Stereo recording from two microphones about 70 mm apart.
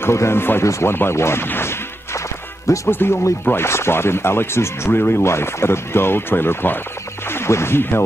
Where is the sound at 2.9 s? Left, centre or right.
Left.